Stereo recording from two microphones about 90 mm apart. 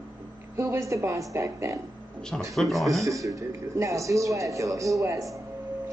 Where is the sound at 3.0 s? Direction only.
35° right (ahead or behind).